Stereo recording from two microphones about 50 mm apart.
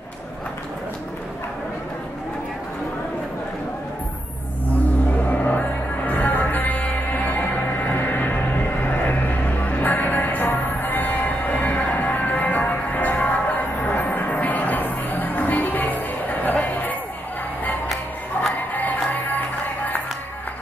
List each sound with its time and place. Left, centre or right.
5.3 s music: left
16.6 s a sound: left
18.7 s music: left